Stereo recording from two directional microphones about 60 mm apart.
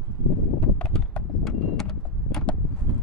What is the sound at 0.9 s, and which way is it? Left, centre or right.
Clip-clop, centre.